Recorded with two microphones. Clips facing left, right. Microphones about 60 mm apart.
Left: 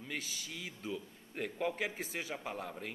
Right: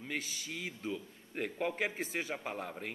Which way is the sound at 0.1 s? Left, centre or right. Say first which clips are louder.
Right 3 dB; centre.